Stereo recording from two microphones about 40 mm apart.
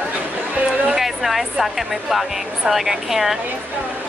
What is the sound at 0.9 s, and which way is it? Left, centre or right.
A woman's voice, centre.